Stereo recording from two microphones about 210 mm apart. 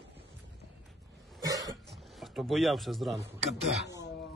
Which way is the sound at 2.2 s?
Centre (ahead or behind).